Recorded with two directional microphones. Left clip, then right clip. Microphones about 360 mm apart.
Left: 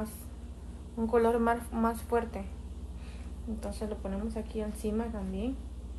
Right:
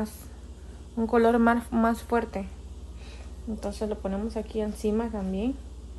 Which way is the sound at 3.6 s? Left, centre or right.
Right.